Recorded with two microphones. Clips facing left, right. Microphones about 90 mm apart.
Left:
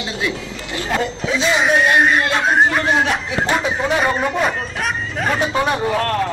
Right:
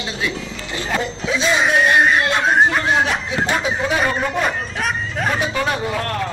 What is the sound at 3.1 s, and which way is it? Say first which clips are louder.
Speech: left 1 dB; 15° left (ahead or behind).